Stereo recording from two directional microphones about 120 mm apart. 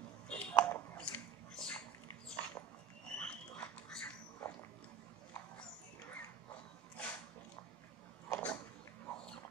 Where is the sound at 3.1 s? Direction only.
10° left (ahead or behind).